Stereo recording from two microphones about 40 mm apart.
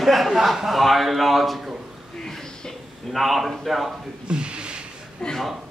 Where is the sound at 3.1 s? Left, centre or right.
Centre.